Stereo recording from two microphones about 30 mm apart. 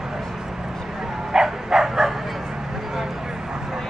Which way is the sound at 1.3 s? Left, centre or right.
Centre.